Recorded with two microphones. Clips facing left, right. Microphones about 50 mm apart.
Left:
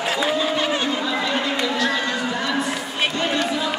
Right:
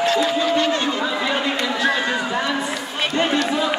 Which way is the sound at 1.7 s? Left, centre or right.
Centre.